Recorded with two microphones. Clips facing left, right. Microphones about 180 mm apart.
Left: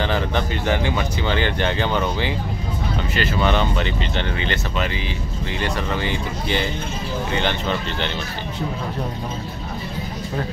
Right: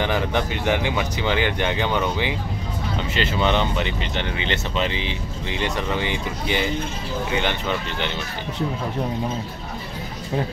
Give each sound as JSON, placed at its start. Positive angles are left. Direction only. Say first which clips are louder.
{"t": 0.0, "sound": "speech", "louder": "even", "side_deg": -15}